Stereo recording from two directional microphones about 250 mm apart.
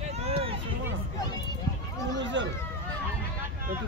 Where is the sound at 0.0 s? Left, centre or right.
Right.